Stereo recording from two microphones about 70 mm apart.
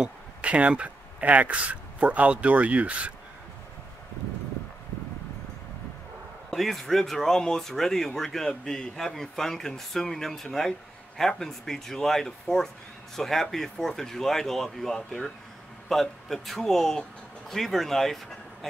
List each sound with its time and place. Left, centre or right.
0.0 s speech: centre
6.5 s a man's voice: centre